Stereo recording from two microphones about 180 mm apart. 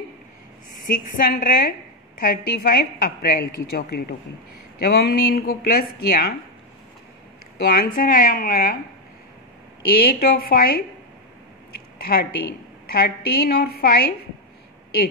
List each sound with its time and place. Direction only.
0.8 s a woman's voice: 50° left (ahead or behind)
7.5 s speech: 60° left (ahead or behind)
9.8 s a woman's voice: 60° left (ahead or behind)
12.0 s a woman's voice: 55° left (ahead or behind)